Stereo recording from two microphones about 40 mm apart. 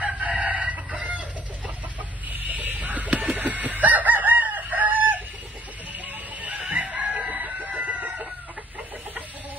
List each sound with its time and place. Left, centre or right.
0.0 s chicken: right
2.2 s a sound: right
3.3 s chicken: right
6.7 s chicken: right